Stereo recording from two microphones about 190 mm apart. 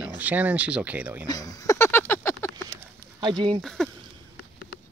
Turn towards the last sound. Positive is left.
turn(degrees=5)  # may be behind; listen again after turning